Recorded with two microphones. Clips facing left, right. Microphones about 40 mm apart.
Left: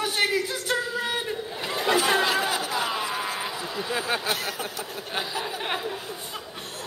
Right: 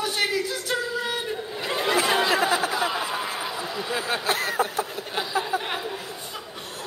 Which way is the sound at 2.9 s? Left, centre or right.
Centre.